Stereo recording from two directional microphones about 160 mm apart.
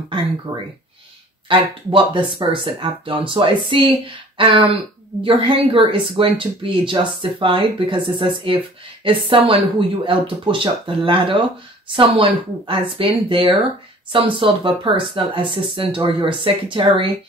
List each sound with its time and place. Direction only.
0.5 s speech: 20° right (ahead or behind)
1.5 s speech: 30° right (ahead or behind)